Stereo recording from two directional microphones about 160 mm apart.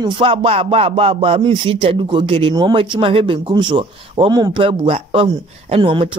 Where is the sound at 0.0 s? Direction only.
35° right (ahead or behind).